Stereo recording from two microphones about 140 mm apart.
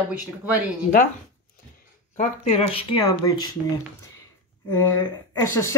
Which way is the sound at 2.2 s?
45° left (ahead or behind).